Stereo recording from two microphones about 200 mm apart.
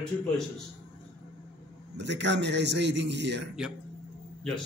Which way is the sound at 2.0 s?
60° right (ahead or behind).